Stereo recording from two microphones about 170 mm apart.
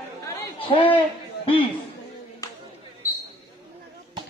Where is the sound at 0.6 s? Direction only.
30° left (ahead or behind).